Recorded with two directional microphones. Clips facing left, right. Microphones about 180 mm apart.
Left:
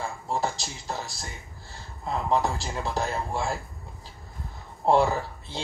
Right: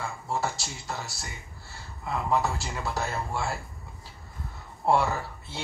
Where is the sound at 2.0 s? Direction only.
20° left (ahead or behind).